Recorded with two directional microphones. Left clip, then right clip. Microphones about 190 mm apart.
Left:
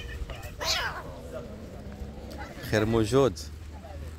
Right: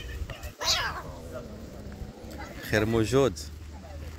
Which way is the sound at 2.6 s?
10° left (ahead or behind).